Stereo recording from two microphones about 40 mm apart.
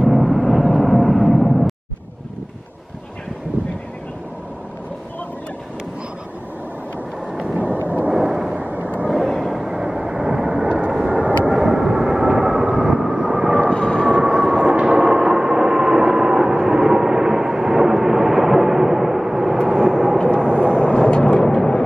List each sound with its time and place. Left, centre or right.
0.1 s vehicle: centre
1.4 s music: centre
7.2 s thunder: centre
7.5 s a sound: right
8.1 s a sound: centre
8.5 s vehicle: right
9.1 s vehicle: centre
9.5 s vehicle: centre
11.1 s vehicle: right
11.4 s vehicle: centre
13.7 s vehicle: left
14.4 s vehicle: centre
14.9 s vehicle: centre
19.8 s vehicle: centre